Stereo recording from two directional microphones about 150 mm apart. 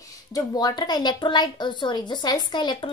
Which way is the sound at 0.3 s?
25° left (ahead or behind).